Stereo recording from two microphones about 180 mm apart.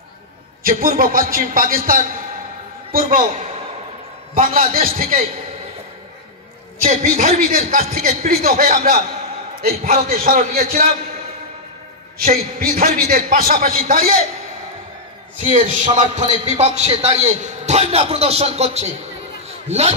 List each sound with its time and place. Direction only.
0.7 s a man's voice: 50° right (ahead or behind)
6.8 s a man's voice: 40° right (ahead or behind)
12.2 s a man's voice: 55° right (ahead or behind)
15.4 s a man's voice: 45° right (ahead or behind)